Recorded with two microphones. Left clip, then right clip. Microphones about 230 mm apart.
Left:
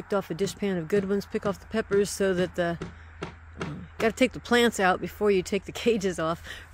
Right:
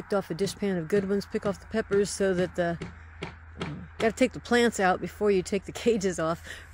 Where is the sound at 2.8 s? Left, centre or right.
Left.